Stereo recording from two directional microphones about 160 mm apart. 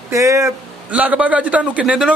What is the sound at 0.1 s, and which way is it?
A man's voice, 20° right (ahead or behind).